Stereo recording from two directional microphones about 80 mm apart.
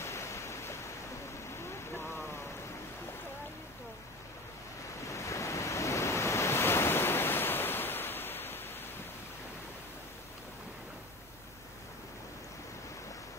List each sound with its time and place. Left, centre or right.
0.0 s waves: left
1.5 s a sound: left
5.0 s waves: left